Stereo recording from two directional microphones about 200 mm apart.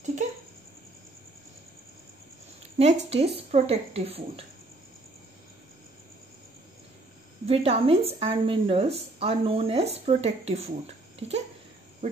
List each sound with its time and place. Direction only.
2.8 s a woman's voice: 30° right (ahead or behind)
7.4 s a woman's voice: 30° right (ahead or behind)
11.1 s a sound: 35° right (ahead or behind)
12.0 s cricket: 35° right (ahead or behind)